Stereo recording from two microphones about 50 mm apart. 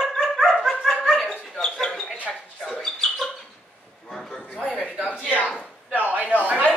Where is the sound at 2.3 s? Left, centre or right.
Centre.